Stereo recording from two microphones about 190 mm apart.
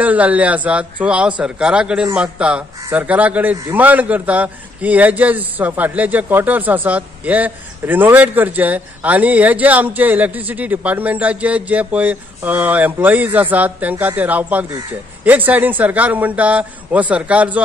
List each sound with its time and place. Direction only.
0.0 s a man's voice: 10° right (ahead or behind)